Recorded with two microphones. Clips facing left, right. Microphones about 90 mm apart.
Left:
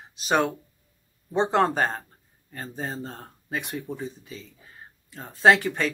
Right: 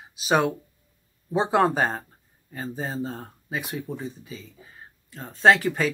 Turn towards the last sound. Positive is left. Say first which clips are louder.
# even
turn(degrees=0)  # may be behind; listen again after turning